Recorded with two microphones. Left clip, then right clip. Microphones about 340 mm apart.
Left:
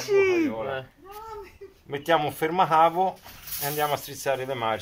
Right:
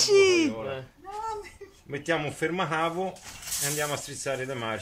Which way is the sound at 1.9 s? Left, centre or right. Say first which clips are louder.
Left 5 dB; centre.